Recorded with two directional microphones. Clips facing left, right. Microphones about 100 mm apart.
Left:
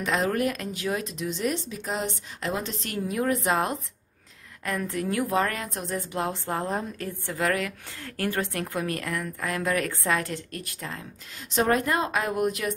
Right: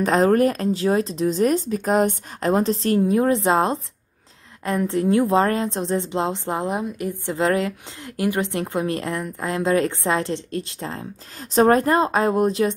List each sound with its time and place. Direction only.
0.0 s a woman's voice: 40° right (ahead or behind)